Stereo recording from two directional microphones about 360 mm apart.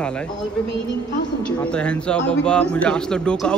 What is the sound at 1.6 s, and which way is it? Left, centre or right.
Speech, centre.